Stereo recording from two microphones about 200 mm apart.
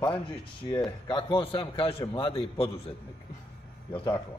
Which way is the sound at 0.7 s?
20° left (ahead or behind).